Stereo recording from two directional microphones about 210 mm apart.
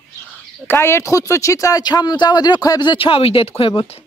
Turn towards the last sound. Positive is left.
turn(degrees=25)  # may be behind; listen again after turning